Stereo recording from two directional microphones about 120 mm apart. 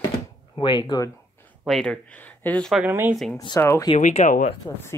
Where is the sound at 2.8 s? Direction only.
20° right (ahead or behind).